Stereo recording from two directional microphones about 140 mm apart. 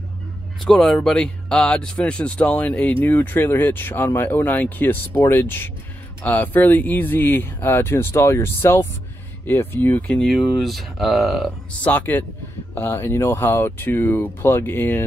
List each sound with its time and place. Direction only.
0.7 s speech: 5° left (ahead or behind)
11.8 s speech: 10° left (ahead or behind)